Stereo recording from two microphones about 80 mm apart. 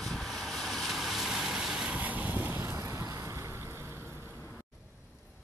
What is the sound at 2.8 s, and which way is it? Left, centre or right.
Vehicle, right.